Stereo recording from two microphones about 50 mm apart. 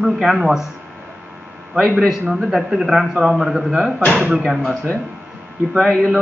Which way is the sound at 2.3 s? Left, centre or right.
Centre.